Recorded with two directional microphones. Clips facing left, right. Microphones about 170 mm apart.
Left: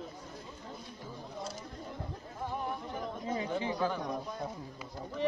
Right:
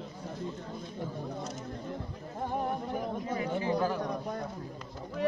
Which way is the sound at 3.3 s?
25° left (ahead or behind).